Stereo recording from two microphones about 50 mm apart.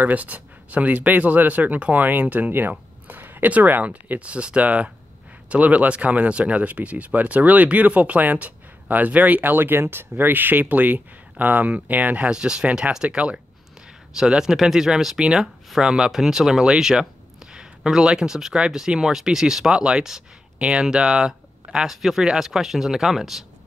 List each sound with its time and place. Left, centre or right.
0.0 s speech: right
12.3 s speech: centre